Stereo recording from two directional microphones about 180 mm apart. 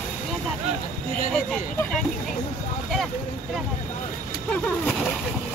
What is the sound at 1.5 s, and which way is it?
Speech, 5° left (ahead or behind).